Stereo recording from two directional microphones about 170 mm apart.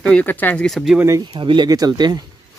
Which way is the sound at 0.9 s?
20° right (ahead or behind).